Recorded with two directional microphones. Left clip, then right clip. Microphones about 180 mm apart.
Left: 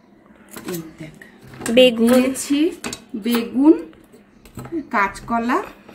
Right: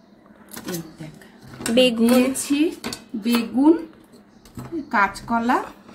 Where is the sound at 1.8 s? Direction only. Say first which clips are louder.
Left 5 dB; 5° left (ahead or behind).